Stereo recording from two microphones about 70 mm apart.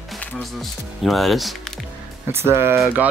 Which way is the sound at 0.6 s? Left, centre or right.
Centre.